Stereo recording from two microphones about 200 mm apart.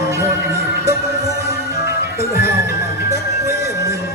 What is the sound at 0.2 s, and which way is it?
Music, 15° right (ahead or behind).